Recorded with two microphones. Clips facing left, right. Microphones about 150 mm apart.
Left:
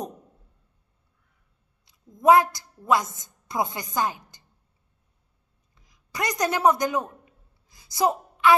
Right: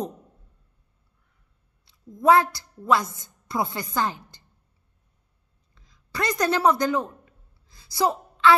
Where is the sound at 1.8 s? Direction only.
20° left (ahead or behind).